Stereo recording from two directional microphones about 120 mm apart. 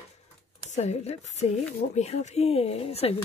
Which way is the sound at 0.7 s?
70° left (ahead or behind).